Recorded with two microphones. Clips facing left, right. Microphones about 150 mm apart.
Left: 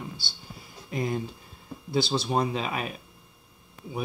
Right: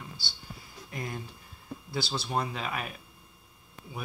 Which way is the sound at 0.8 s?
20° left (ahead or behind).